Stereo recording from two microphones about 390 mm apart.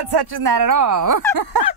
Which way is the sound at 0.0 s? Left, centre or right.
Right.